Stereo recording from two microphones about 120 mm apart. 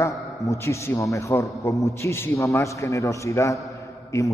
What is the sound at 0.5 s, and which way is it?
A man's voice, 25° left (ahead or behind).